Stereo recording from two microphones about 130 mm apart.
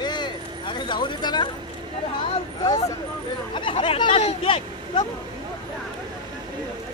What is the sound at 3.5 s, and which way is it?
Speech, 40° left (ahead or behind).